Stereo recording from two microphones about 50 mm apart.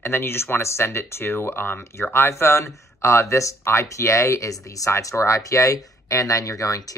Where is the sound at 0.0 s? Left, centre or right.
Left.